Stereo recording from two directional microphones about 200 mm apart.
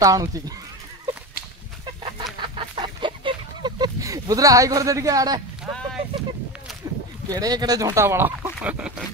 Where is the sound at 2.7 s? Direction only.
25° right (ahead or behind).